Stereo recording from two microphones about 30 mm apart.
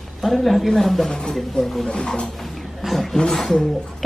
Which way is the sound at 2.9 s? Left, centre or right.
Centre.